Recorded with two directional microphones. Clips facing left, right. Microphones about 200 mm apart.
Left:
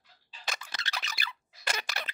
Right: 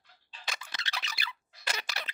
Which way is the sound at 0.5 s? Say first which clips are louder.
Left 2 dB; 45° left (ahead or behind).